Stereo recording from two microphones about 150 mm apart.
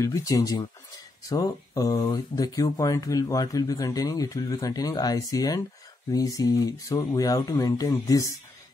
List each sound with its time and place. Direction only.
0.0 s speech: 20° left (ahead or behind)